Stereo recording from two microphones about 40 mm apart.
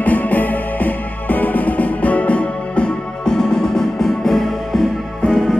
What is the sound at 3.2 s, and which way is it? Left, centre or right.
Music, centre.